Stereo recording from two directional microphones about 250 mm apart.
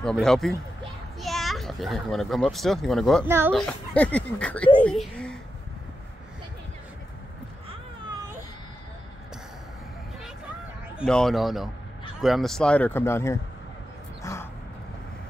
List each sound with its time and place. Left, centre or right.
0.0 s a child's voice: centre
3.3 s speech: centre
3.5 s speech: centre
11.0 s speech: centre
14.2 s a sound: centre